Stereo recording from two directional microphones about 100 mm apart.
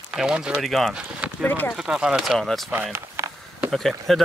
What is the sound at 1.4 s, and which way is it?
Speech, 20° left (ahead or behind).